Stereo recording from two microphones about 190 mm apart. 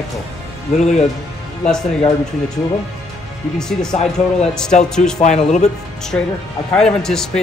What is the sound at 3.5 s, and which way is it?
Speech, 5° left (ahead or behind).